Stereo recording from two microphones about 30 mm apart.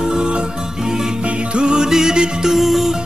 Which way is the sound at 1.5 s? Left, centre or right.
Right.